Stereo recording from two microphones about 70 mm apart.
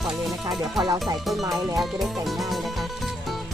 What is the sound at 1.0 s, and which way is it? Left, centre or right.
Speech, centre.